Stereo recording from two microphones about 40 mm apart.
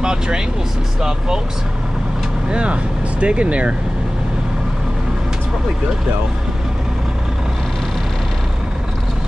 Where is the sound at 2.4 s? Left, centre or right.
Right.